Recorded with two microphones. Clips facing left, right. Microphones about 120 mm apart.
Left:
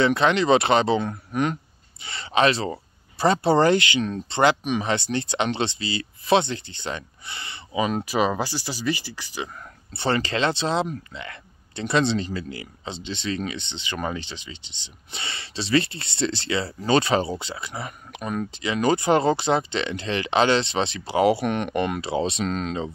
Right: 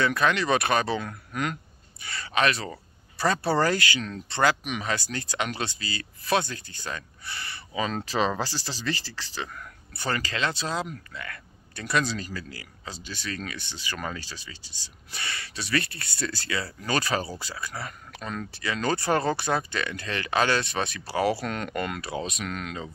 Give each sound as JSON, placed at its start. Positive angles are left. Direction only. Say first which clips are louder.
{"t": 0.0, "sound": "speech", "louder": "left 5 dB", "side_deg": 25}
{"t": 9.9, "sound": "speech", "louder": "left 6 dB", "side_deg": 25}